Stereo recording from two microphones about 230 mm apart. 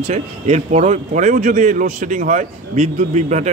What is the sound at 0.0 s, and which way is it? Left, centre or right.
Speech, right.